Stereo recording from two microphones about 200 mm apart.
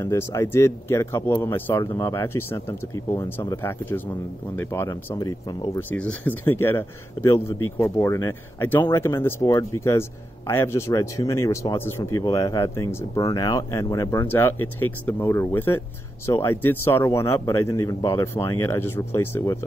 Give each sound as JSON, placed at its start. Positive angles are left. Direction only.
{"t": 0.0, "sound": "a man's voice", "side_deg": 15}
{"t": 5.8, "sound": "a man's voice", "side_deg": 5}